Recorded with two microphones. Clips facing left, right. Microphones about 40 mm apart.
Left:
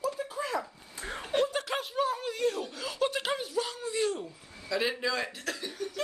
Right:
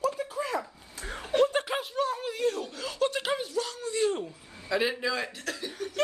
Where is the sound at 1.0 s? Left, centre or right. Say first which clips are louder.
Right 4 dB; centre.